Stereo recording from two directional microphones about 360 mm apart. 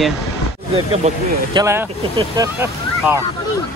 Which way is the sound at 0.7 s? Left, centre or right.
Centre.